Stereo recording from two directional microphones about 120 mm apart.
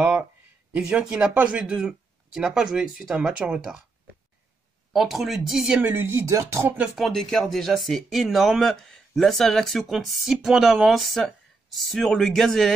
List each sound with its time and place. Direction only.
0.0 s a sound: 10° right (ahead or behind)
0.7 s speech: 5° right (ahead or behind)
4.9 s speech: 5° right (ahead or behind)
5.8 s speech: 15° right (ahead or behind)
6.8 s speech: centre (ahead or behind)